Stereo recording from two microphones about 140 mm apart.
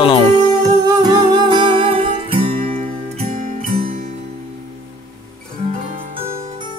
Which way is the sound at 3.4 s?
90° right.